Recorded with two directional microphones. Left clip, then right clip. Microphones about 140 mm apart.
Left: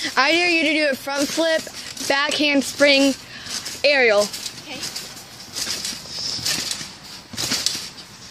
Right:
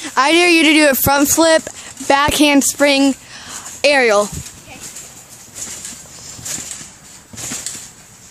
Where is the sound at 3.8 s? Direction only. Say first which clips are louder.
Right 4 dB; 65° right (ahead or behind).